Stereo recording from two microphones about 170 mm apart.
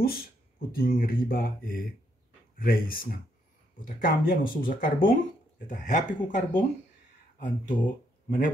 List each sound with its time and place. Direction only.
0.0 s mantra: 60° left (ahead or behind)
5.7 s speech: 50° left (ahead or behind)